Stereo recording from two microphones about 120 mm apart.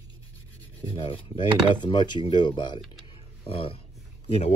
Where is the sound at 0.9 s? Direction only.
45° left (ahead or behind).